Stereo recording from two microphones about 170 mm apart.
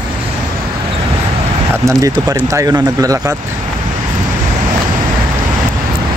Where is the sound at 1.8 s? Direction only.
20° right (ahead or behind).